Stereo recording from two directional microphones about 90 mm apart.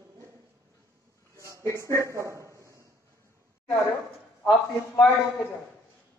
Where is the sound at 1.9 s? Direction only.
35° right (ahead or behind).